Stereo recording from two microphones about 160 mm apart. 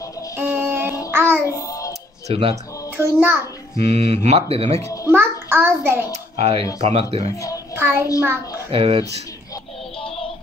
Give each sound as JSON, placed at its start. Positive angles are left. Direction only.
{"t": 0.4, "sound": "music", "side_deg": -15}
{"t": 1.5, "sound": "child singing", "side_deg": 20}
{"t": 2.2, "sound": "speech", "side_deg": -35}
{"t": 3.0, "sound": "child singing", "side_deg": -10}
{"t": 3.7, "sound": "speech", "side_deg": -40}
{"t": 4.7, "sound": "a child's voice", "side_deg": 20}
{"t": 5.1, "sound": "child singing", "side_deg": -15}
{"t": 6.3, "sound": "speech", "side_deg": -40}
{"t": 7.3, "sound": "a child's voice", "side_deg": 20}
{"t": 7.7, "sound": "child singing", "side_deg": -15}
{"t": 8.6, "sound": "speech", "side_deg": -35}
{"t": 9.9, "sound": "synthetic singing", "side_deg": 35}